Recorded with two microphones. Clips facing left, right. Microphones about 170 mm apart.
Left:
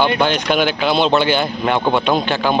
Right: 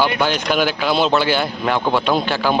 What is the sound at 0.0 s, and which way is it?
Speech, 25° left (ahead or behind).